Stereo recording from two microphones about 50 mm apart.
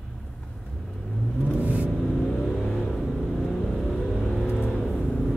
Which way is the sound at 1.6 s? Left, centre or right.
Right.